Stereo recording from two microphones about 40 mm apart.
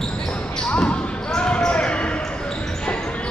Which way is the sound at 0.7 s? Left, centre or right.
Left.